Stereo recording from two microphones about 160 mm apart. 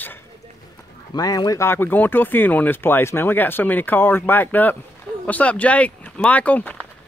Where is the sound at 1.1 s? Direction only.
25° left (ahead or behind).